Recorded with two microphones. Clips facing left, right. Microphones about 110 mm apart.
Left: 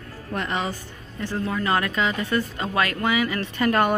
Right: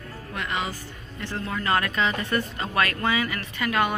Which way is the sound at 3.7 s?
40° left (ahead or behind).